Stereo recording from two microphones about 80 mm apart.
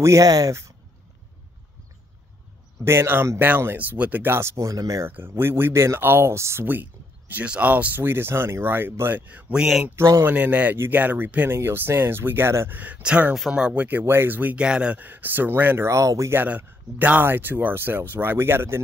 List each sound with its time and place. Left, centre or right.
0.0 s speech: right
2.8 s speech: right
5.0 s speech: right
12.7 s speech: centre
15.9 s speech: right
16.3 s speech: centre